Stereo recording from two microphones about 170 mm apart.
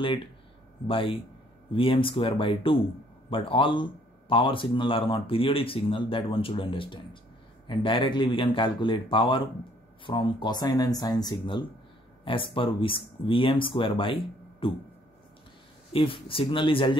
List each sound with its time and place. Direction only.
0.8 s speech: 30° left (ahead or behind)
15.9 s speech: 30° left (ahead or behind)